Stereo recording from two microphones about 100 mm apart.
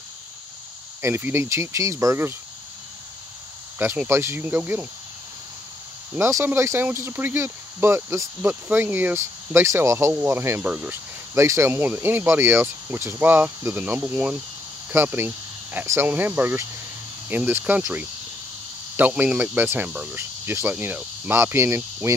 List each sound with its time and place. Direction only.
1.0 s speech: 25° right (ahead or behind)
3.7 s speech: 20° right (ahead or behind)
6.1 s speech: 25° right (ahead or behind)
10.7 s cricket: 15° right (ahead or behind)
11.3 s speech: 30° right (ahead or behind)
17.3 s cricket: 20° right (ahead or behind)
18.9 s speech: 15° right (ahead or behind)